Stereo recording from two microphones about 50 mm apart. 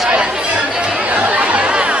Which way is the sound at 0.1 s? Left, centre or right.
Right.